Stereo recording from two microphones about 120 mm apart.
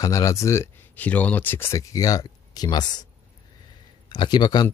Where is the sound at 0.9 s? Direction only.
15° left (ahead or behind); by 3.1 s 35° left (ahead or behind).